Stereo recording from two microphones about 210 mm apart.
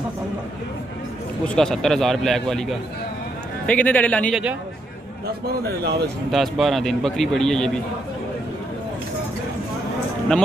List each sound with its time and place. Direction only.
1.4 s a man's voice: 5° left (ahead or behind)
3.6 s a man's voice: 5° left (ahead or behind)
5.5 s speech: 50° right (ahead or behind)
6.3 s a man's voice: centre (ahead or behind)